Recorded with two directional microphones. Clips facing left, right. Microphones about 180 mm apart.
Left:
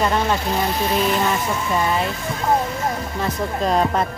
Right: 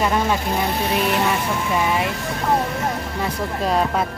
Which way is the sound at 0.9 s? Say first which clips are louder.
Left 1 dB; 60° right (ahead or behind).